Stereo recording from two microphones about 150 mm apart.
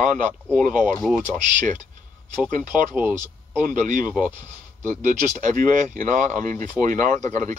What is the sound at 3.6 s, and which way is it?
Speech, 60° right (ahead or behind).